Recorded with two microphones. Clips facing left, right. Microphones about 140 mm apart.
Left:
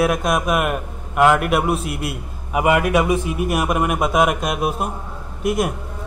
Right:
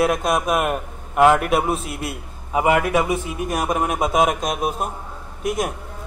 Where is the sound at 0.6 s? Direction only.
30° right (ahead or behind).